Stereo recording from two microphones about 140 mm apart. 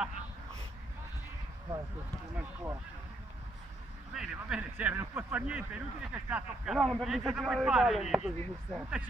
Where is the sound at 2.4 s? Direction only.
15° right (ahead or behind).